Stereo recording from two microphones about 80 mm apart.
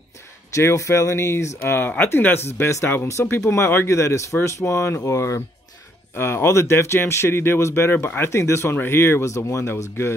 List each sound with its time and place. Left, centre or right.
0.6 s speech: left